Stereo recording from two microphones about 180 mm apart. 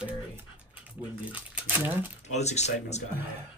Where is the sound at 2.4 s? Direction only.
40° left (ahead or behind).